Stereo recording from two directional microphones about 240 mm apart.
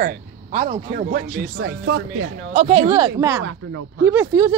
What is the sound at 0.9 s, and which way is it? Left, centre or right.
Speech, right.